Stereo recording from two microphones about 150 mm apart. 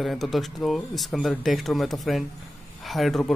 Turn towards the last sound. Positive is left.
turn(degrees=0)  # may be behind; listen again after turning